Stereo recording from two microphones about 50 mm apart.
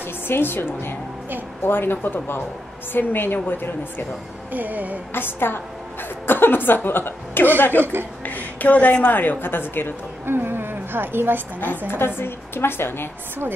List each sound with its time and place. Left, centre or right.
0.3 s a woman's voice: left
4.5 s music: right
5.1 s a woman's voice: left
7.8 s a woman's voice: right
8.2 s a woman's voice: left
10.2 s a woman's voice: right
12.2 s a woman's voice: left